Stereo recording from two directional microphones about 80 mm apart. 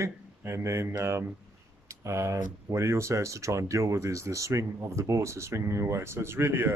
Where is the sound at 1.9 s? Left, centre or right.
Right.